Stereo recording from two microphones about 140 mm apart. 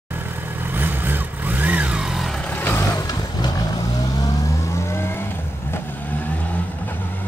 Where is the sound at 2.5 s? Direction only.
15° left (ahead or behind).